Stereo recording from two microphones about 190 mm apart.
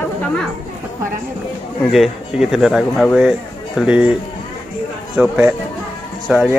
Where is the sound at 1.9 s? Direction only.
Centre (ahead or behind).